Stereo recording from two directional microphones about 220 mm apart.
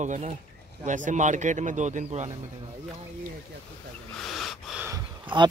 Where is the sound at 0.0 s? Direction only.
35° right (ahead or behind).